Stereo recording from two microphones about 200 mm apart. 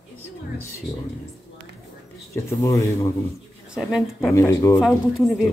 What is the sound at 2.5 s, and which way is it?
Speech, 15° left (ahead or behind).